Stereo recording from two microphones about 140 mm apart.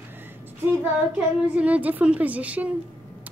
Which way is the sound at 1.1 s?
10° right (ahead or behind).